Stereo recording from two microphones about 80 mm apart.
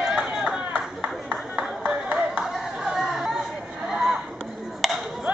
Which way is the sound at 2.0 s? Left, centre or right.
Centre.